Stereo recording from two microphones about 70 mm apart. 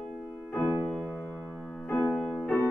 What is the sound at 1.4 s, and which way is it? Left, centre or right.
Keyboard, centre.